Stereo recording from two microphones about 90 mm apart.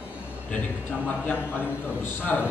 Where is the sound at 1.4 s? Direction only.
25° left (ahead or behind).